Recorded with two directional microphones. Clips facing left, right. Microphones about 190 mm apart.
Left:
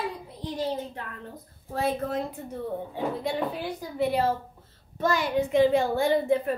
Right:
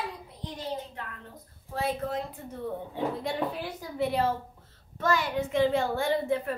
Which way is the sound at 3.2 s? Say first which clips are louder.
Left 2 dB; centre (ahead or behind).